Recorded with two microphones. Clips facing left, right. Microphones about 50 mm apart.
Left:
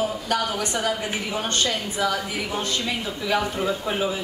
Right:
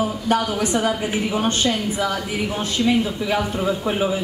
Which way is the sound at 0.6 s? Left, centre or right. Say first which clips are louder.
Right 5 dB; centre.